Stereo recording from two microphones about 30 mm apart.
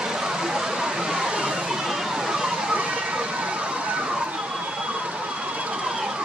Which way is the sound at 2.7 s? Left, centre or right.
Right.